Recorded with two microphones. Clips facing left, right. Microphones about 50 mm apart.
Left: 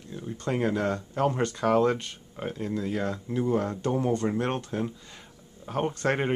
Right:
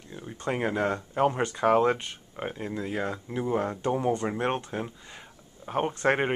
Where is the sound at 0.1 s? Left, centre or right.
Centre.